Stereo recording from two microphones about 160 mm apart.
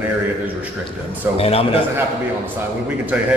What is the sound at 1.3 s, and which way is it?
Speech, 40° left (ahead or behind).